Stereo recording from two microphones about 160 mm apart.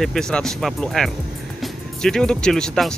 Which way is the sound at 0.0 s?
5° left (ahead or behind).